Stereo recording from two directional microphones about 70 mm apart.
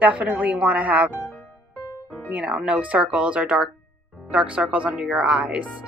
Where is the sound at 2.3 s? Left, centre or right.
Centre.